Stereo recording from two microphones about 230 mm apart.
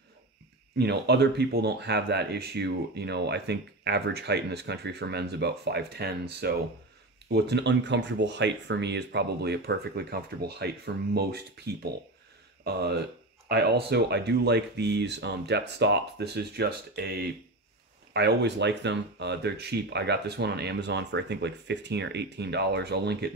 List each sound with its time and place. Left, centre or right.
0.7 s speech: right